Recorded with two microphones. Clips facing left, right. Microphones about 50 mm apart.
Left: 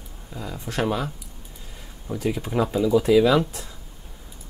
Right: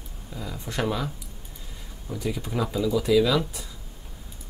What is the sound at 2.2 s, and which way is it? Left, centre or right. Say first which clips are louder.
Speech: left 4 dB; left.